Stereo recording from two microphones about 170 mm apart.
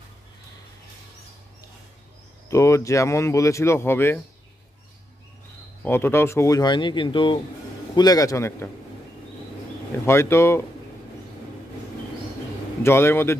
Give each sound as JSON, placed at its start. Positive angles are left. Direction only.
{"t": 2.5, "sound": "speech", "side_deg": 15}
{"t": 5.8, "sound": "speech", "side_deg": 10}
{"t": 10.0, "sound": "speech", "side_deg": 15}
{"t": 12.8, "sound": "speech", "side_deg": 15}